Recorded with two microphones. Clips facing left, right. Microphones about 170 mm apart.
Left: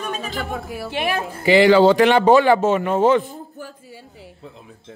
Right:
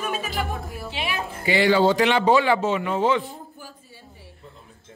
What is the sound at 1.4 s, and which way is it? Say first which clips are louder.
Speech: left 6 dB; 90° left.